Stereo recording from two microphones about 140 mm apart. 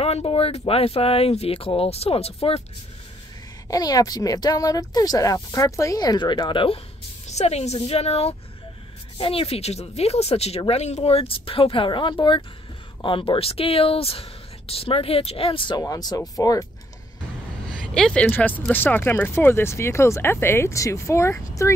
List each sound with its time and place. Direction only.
0.0 s speech: 45° left (ahead or behind)
3.6 s speech: 25° left (ahead or behind)
7.2 s speech: 50° left (ahead or behind)
15.8 s speech: 25° left (ahead or behind)
17.9 s speech: 5° left (ahead or behind)